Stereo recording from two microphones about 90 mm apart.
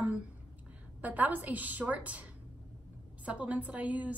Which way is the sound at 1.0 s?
15° right (ahead or behind).